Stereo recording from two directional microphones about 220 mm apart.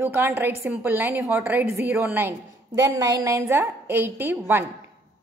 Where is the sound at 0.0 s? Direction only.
10° right (ahead or behind).